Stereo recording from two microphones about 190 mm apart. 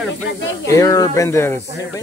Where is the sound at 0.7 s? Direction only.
20° left (ahead or behind).